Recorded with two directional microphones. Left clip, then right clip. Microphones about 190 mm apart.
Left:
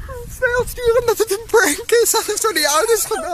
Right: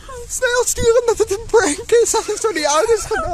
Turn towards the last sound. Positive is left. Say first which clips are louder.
# right 1 dB
turn(degrees=0)  # may be behind; listen again after turning